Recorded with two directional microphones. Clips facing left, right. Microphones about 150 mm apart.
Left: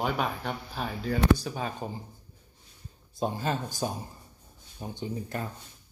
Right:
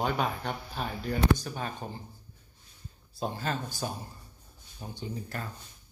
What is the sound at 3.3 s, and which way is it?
Speech, 15° left (ahead or behind).